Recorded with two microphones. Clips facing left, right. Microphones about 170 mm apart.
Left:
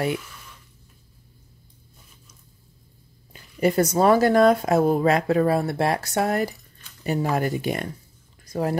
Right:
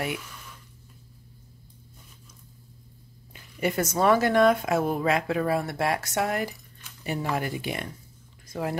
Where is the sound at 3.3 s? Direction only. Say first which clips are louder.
Left 6 dB; 35° left (ahead or behind).